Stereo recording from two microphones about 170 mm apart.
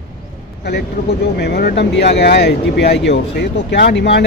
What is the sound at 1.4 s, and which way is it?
Speech, 70° left (ahead or behind).